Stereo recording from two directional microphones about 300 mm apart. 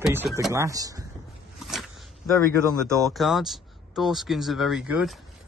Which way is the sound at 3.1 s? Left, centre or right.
Centre.